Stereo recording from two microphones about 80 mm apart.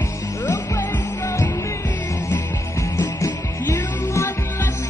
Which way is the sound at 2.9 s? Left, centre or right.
Left.